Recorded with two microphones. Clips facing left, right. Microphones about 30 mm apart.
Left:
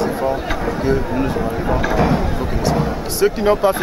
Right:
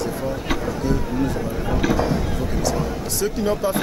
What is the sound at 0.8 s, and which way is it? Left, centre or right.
Speech, left.